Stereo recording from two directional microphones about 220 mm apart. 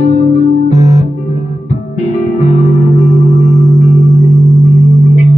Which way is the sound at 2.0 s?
30° left (ahead or behind).